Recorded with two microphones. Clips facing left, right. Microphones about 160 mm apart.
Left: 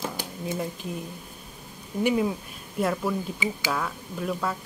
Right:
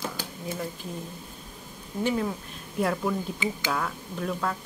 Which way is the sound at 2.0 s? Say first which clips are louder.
Left 3 dB; 10° left (ahead or behind).